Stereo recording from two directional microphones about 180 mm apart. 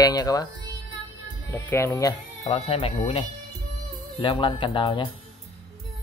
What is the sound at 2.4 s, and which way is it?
Speech, 35° left (ahead or behind).